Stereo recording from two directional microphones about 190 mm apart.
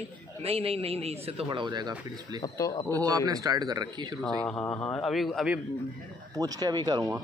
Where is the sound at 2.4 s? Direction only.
20° left (ahead or behind).